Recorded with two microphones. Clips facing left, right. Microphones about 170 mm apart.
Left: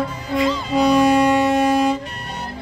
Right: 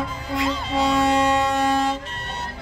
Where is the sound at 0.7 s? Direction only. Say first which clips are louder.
Left 5 dB; 25° right (ahead or behind).